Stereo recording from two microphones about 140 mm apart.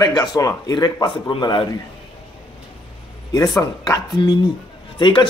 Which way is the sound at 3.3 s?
25° left (ahead or behind).